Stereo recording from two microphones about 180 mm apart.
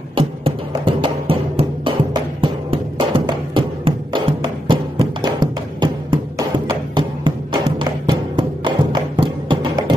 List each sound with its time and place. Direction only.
0.1 s music: 30° right (ahead or behind)